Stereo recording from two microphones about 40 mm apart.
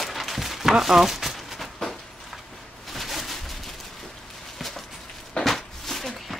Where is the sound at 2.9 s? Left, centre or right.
Centre.